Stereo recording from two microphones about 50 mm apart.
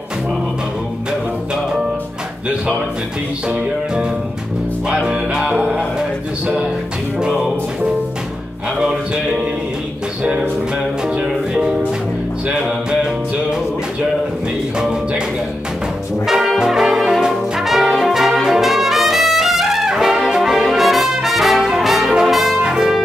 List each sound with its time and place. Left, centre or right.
4.8 s music: centre
10.2 s music: right
12.4 s music: centre
14.8 s music: centre
16.3 s brass instrument: centre
22.6 s music: centre